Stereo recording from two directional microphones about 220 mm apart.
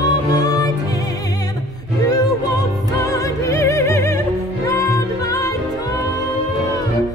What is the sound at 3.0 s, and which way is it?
Music, 15° left (ahead or behind).